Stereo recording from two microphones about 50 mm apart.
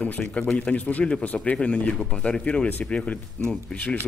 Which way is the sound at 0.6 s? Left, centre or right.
Left.